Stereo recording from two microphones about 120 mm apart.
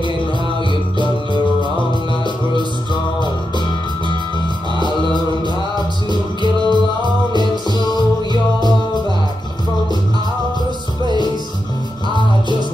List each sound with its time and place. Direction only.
2.2 s music: 40° left (ahead or behind)
4.7 s music: 40° left (ahead or behind)
6.4 s music: 40° right (ahead or behind)
7.3 s music: 35° left (ahead or behind)